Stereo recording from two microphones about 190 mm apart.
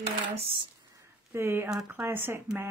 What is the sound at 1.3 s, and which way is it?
Speech, 10° right (ahead or behind).